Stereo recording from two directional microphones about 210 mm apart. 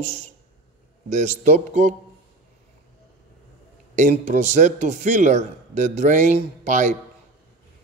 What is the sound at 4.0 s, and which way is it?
Speech, 35° right (ahead or behind).